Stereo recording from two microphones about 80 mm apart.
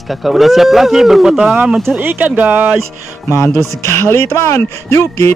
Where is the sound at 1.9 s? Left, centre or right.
Right.